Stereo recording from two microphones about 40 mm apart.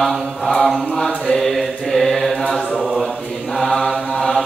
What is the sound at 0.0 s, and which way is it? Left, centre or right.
Mantra, centre.